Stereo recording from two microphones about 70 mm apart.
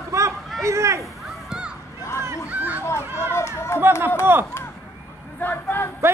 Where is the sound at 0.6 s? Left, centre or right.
Right.